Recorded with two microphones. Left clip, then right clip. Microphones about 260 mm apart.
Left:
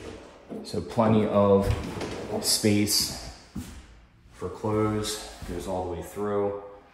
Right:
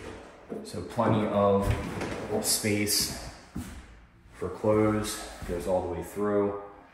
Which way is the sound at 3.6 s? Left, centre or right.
Centre.